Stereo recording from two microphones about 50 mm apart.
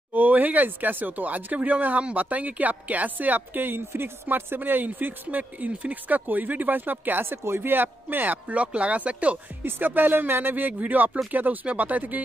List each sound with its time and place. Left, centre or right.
0.1 s speech: right
4.6 s speech: right
7.2 s speech: right
9.6 s speech: right